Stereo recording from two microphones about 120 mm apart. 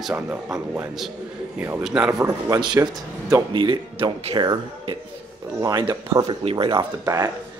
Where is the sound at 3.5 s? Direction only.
40° right (ahead or behind).